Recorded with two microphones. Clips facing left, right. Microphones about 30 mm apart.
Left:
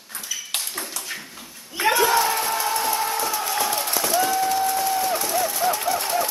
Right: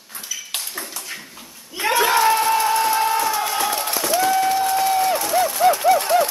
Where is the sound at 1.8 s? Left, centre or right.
Right.